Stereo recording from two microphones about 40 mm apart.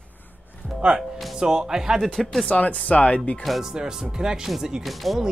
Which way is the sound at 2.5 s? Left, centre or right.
Left.